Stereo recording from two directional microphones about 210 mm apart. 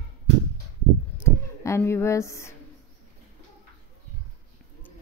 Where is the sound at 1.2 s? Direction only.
15° left (ahead or behind).